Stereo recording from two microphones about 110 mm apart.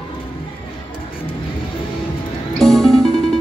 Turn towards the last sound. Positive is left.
turn(degrees=0)  # may be behind; listen again after turning